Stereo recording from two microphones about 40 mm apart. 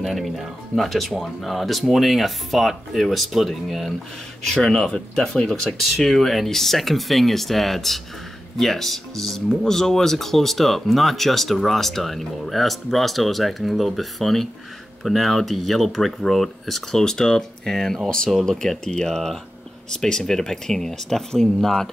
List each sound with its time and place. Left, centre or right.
0.0 s speech: centre
5.8 s speech: centre